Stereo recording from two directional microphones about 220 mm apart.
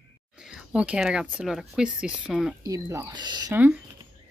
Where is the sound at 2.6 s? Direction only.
15° right (ahead or behind).